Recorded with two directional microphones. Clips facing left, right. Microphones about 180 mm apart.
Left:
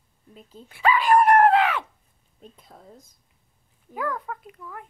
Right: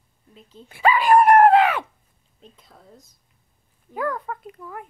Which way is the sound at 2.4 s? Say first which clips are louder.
Left 2 dB; 50° left (ahead or behind).